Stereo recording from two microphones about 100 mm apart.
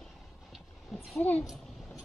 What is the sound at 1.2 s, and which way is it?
Speech, 15° left (ahead or behind).